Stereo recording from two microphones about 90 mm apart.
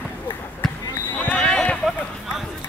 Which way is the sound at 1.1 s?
15° left (ahead or behind).